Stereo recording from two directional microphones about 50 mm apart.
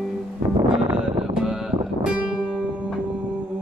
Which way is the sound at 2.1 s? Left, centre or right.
Right.